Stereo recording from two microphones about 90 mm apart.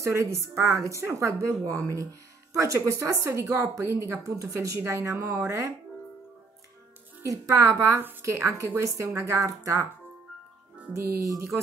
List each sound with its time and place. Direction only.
0.0 s speech: 35° right (ahead or behind)
7.2 s speech: 40° right (ahead or behind)
10.9 s music: 25° right (ahead or behind)
11.1 s speech: 40° right (ahead or behind)